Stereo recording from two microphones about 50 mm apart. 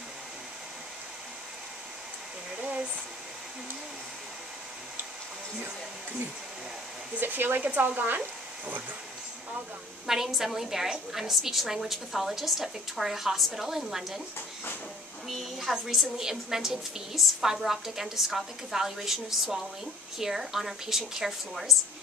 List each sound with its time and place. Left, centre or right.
2.5 s hair dryer: right
7.2 s speech: right
7.6 s speech: right
10.0 s a woman's voice: centre
15.2 s a woman's voice: centre